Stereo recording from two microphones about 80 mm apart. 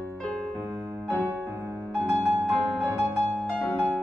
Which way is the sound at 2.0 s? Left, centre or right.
Centre.